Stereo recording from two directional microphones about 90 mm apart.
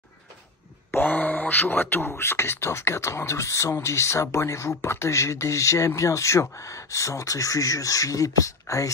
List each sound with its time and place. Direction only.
0.9 s speech: 20° left (ahead or behind); by 8.9 s 35° left (ahead or behind)